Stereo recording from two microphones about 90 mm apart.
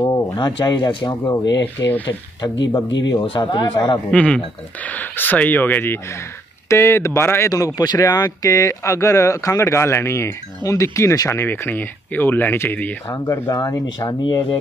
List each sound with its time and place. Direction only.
0.0 s speech: 50° left (ahead or behind)
4.1 s speech: 15° left (ahead or behind)
13.1 s speech: 40° left (ahead or behind)